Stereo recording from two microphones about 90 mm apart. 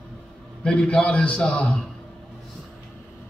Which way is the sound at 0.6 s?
10° left (ahead or behind).